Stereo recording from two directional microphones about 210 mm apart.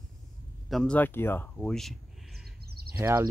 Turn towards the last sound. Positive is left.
turn(degrees=-10)  # may be behind; listen again after turning